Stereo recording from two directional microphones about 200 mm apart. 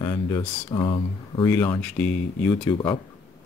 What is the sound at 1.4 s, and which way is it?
Speech, 10° left (ahead or behind).